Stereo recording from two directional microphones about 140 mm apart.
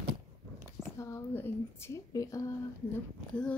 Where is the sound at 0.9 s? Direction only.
20° left (ahead or behind).